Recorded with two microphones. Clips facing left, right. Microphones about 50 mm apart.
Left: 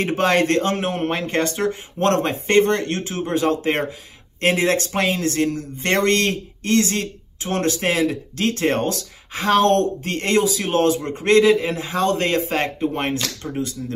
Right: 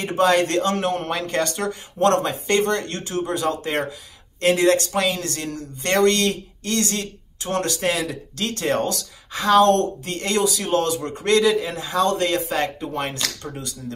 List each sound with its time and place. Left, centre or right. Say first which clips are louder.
0.2 s speech: right 1 dB; left